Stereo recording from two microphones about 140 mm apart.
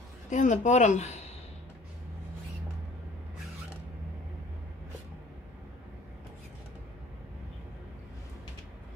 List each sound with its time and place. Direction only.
0.3 s speech: 60° left (ahead or behind)